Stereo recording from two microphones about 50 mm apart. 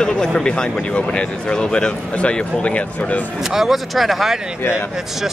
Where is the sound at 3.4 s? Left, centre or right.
Centre.